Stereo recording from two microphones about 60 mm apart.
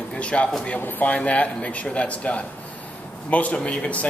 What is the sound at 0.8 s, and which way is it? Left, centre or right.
Speech, left.